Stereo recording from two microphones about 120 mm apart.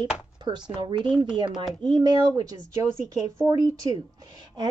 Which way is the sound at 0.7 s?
45° right (ahead or behind).